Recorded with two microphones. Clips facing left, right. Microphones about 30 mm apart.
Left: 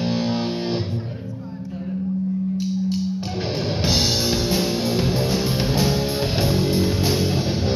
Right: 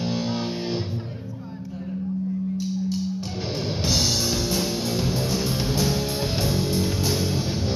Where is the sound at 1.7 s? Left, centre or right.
Centre.